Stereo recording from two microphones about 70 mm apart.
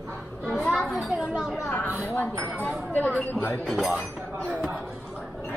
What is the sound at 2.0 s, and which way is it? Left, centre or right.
Speech, left.